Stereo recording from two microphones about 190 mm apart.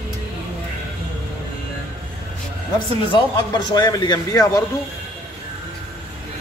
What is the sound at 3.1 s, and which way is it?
A man's voice, 20° left (ahead or behind).